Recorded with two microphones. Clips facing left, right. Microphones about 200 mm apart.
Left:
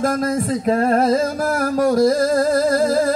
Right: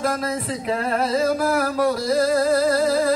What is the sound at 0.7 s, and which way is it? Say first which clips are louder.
Music: left 7 dB; 45° left (ahead or behind).